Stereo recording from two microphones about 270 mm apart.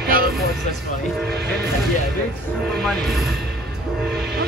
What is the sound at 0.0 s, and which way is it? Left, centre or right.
Vehicle, right.